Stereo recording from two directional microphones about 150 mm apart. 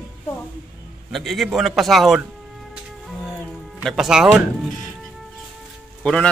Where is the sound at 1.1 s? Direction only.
Centre (ahead or behind).